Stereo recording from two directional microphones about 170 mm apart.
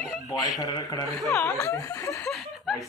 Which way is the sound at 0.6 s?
20° left (ahead or behind).